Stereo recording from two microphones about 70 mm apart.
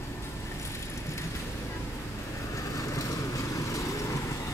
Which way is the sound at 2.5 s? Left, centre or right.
Left.